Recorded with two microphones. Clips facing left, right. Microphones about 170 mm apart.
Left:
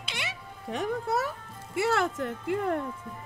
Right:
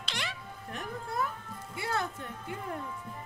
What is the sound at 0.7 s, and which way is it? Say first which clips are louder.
Speech: left 8 dB; 80° left.